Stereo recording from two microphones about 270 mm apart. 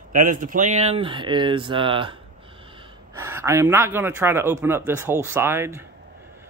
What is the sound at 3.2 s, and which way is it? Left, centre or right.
Speech, centre.